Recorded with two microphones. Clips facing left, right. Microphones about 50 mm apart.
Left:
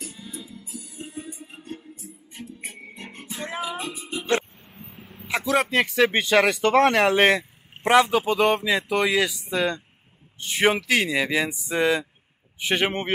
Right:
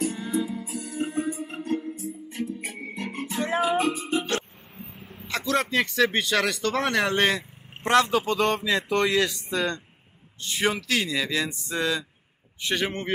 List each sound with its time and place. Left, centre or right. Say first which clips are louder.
0.0 s music: right 12 dB; centre
0.7 s music: right 7 dB; right
1.7 s music: right 10 dB; right
3.1 s music: right 6 dB; right
4.7 s a man's voice: right 1 dB; centre
10.5 s speech: left 4 dB; left